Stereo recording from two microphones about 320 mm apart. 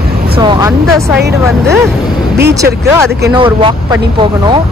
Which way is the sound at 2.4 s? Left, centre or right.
Centre.